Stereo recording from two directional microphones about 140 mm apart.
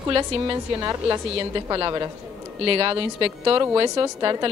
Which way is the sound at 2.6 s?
40° right (ahead or behind).